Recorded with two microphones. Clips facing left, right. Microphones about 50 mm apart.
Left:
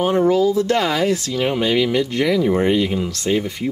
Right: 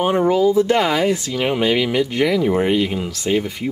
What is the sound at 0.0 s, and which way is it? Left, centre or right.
Speech, centre.